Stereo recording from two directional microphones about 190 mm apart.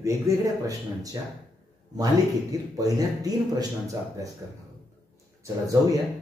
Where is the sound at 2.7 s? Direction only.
20° right (ahead or behind).